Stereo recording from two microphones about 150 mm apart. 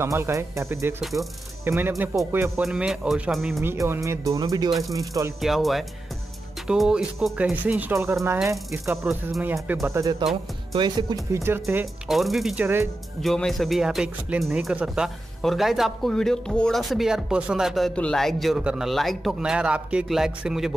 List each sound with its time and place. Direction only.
0.0 s speech: 20° right (ahead or behind)
2.6 s speech: 5° right (ahead or behind)
3.6 s speech: 20° right (ahead or behind)
5.4 s speech: centre (ahead or behind); by 11.4 s 30° right (ahead or behind)
11.4 s speech: 15° right (ahead or behind)
12.1 s speech: centre (ahead or behind)